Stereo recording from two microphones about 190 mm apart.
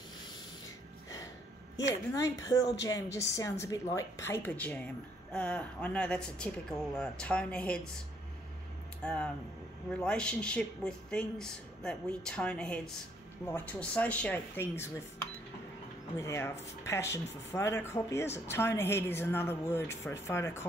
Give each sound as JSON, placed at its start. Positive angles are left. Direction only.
{"t": 2.5, "sound": "speech", "side_deg": 20}
{"t": 9.0, "sound": "speech", "side_deg": 5}
{"t": 16.2, "sound": "speech", "side_deg": 15}